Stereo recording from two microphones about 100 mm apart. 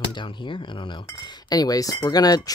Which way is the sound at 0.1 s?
50° left (ahead or behind).